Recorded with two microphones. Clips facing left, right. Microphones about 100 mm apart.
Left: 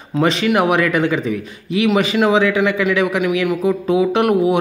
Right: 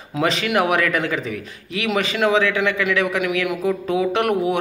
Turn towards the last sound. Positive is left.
turn(degrees=0)  # may be behind; listen again after turning